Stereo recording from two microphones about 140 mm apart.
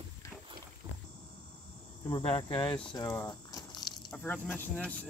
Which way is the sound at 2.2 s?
40° left (ahead or behind).